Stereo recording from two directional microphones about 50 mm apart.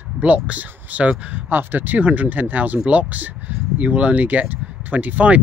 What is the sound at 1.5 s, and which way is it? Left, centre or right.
Speech, right.